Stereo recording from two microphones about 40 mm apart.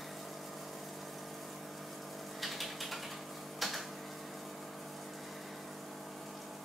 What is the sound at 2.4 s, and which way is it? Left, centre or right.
Ratchet, centre.